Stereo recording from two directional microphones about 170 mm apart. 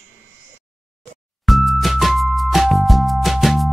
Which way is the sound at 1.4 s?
Centre (ahead or behind).